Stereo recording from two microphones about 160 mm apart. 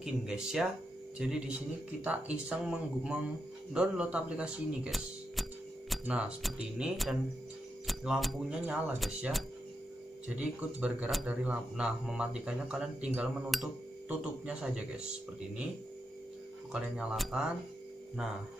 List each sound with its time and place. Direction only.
0.0 s speech: 5° right (ahead or behind)
2.0 s speech: 10° right (ahead or behind)
16.7 s speech: 5° right (ahead or behind)